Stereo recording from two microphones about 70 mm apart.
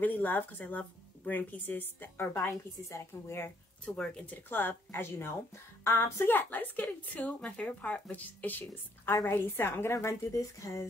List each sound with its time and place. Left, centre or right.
0.0 s speech: left
2.3 s a woman's voice: left
3.8 s speech: centre
4.3 s a woman's voice: left
9.9 s speech: left